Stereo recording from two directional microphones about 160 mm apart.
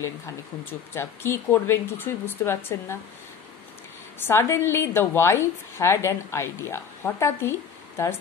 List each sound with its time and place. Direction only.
0.7 s a woman's voice: 15° left (ahead or behind)
4.2 s a woman's voice: 15° left (ahead or behind)